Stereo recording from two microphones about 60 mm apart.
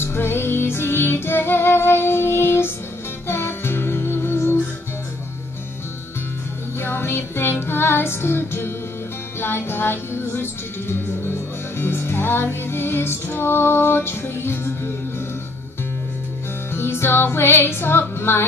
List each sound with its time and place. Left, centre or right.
0.0 s music: left
6.8 s music: left
16.7 s music: left